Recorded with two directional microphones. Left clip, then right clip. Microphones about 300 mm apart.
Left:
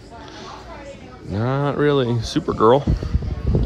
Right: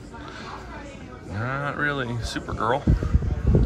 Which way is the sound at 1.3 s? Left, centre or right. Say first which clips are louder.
Left 6 dB; centre.